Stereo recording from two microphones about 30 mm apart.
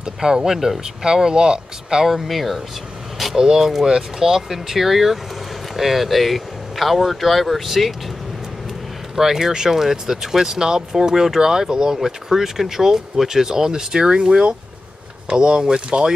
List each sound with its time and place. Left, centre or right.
0.0 s speech: right
2.0 s speech: centre
3.3 s speech: centre
9.1 s speech: centre; by 16.1 s right